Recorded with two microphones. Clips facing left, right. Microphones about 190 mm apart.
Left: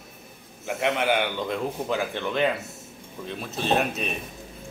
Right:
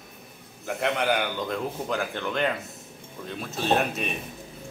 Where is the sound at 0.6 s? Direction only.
Centre (ahead or behind).